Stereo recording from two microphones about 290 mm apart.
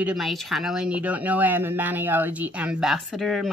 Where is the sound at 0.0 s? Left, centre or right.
Centre.